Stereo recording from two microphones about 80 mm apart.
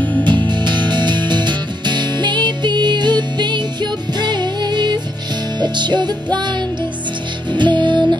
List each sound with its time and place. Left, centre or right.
0.2 s music: right